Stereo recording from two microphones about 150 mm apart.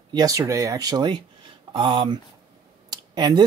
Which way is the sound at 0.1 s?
25° right (ahead or behind).